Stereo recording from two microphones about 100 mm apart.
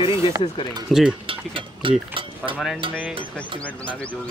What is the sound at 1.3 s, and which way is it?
Speech, 60° right (ahead or behind).